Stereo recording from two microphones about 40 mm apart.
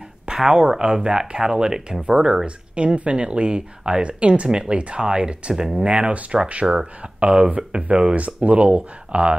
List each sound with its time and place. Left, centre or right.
0.3 s speech: centre
2.4 s speech: right
5.9 s speech: right